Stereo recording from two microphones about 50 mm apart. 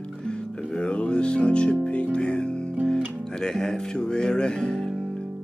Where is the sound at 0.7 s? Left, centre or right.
Centre.